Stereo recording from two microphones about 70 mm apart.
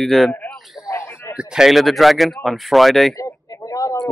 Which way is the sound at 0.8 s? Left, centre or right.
Left.